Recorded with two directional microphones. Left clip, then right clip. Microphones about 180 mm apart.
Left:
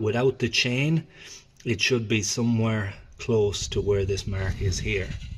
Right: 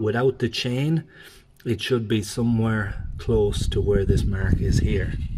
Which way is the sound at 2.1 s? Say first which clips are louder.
Right 1 dB; 20° right (ahead or behind).